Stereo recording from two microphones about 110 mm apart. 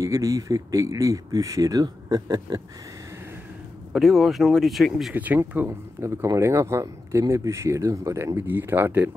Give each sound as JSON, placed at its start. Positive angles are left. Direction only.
{"t": 0.0, "sound": "speech", "side_deg": -30}
{"t": 3.9, "sound": "speech", "side_deg": 0}
{"t": 5.1, "sound": "speech", "side_deg": -15}